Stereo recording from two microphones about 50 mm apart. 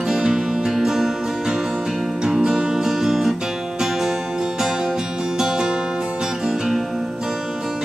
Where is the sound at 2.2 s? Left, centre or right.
Centre.